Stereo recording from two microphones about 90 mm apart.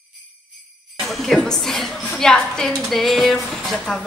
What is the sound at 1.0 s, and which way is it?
Music, centre (ahead or behind).